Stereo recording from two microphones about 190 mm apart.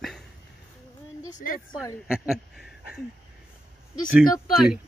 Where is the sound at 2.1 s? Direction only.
5° right (ahead or behind).